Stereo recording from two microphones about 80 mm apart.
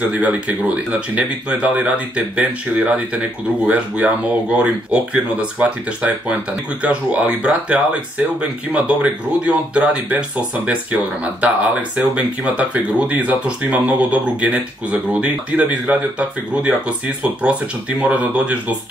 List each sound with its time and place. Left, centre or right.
0.0 s speech: centre